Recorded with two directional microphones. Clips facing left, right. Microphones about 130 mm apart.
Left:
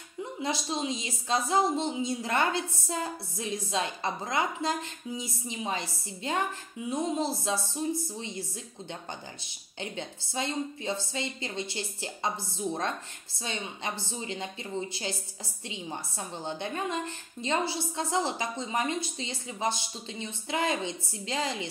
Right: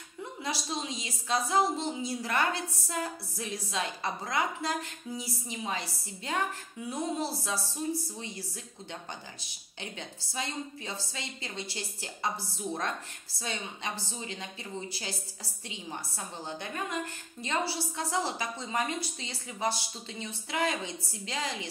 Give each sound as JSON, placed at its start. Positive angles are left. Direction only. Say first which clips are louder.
{"t": 0.4, "sound": "a woman's voice", "louder": "left 4 dB", "side_deg": 25}
{"t": 9.8, "sound": "a woman's voice", "louder": "left 5 dB", "side_deg": 30}
{"t": 13.4, "sound": "a woman's voice", "louder": "left 1 dB", "side_deg": 25}